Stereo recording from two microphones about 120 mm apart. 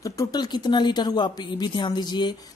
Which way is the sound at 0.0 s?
30° left (ahead or behind).